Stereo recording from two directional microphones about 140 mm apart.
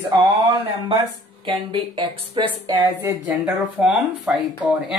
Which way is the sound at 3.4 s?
10° right (ahead or behind).